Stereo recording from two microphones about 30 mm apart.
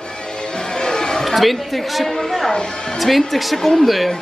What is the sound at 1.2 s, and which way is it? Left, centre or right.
Speech, centre.